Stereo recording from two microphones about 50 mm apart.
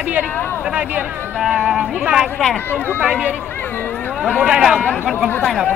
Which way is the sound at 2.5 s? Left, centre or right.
Left.